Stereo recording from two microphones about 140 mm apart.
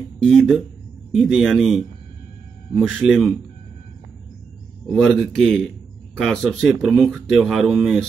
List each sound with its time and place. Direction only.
0.2 s speech: centre (ahead or behind)
4.8 s speech: 5° left (ahead or behind)